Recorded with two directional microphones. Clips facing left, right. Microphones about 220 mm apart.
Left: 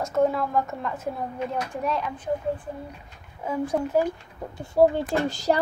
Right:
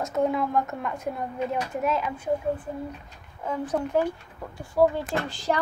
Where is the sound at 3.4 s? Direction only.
10° left (ahead or behind).